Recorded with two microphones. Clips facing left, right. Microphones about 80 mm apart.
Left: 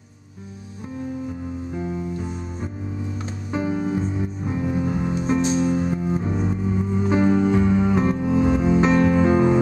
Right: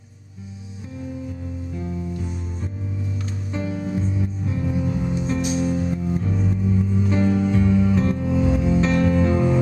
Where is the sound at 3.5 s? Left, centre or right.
Left.